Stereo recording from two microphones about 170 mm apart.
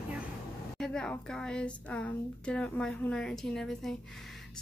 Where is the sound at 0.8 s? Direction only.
5° left (ahead or behind).